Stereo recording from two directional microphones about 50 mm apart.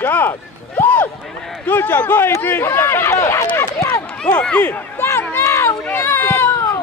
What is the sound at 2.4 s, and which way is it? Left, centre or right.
Speech, left.